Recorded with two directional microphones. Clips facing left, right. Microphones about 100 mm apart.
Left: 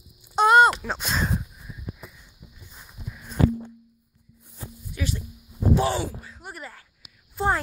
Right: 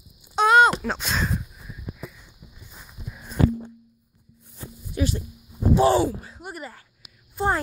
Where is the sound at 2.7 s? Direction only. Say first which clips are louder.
Right 3 dB; 5° right (ahead or behind).